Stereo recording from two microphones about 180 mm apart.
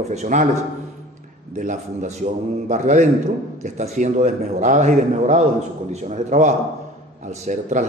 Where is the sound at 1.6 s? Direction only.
45° right (ahead or behind).